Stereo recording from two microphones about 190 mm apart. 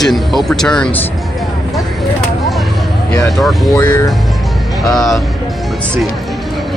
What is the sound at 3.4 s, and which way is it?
Speech, centre (ahead or behind).